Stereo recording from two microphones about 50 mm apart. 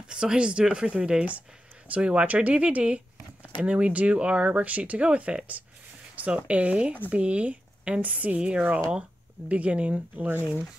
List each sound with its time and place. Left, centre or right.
0.0 s speech: centre; by 10.4 s right